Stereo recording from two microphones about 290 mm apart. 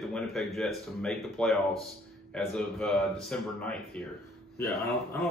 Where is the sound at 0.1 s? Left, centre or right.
Centre.